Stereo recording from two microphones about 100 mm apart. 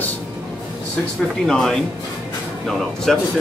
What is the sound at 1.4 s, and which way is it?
Speech, 5° left (ahead or behind).